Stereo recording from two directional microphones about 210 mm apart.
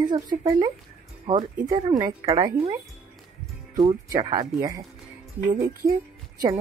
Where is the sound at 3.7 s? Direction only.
20° right (ahead or behind).